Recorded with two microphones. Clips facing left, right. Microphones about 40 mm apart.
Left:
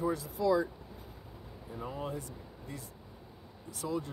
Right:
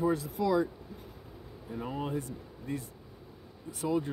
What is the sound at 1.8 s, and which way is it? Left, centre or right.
Speech, right.